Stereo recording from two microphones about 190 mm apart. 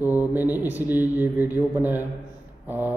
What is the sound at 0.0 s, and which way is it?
A man's voice, 10° right (ahead or behind).